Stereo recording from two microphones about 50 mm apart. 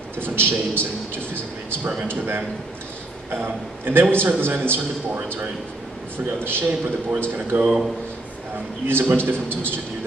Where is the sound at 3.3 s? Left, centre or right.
Right.